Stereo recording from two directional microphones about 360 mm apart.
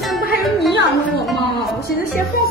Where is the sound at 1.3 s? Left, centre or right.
Left.